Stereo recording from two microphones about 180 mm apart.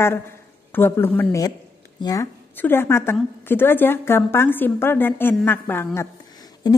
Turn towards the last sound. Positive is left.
turn(degrees=20)  # may be behind; listen again after turning